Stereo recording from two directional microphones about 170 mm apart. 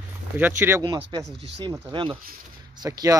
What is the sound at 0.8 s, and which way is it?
Speech, 25° right (ahead or behind).